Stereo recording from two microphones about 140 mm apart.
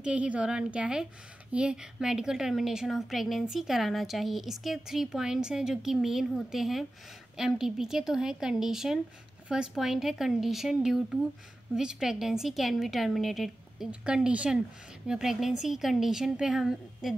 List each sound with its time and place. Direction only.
0.0 s a woman's voice: 10° right (ahead or behind)